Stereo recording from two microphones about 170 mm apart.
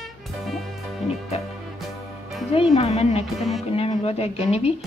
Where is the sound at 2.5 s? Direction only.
35° left (ahead or behind).